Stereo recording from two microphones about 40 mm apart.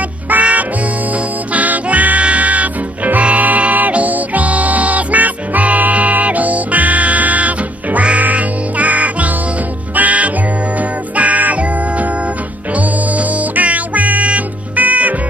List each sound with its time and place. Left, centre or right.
0.3 s music: right